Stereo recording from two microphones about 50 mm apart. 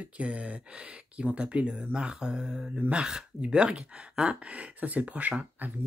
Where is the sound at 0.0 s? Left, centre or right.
Right.